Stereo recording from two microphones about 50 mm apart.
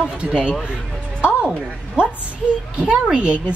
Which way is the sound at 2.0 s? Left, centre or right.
Right.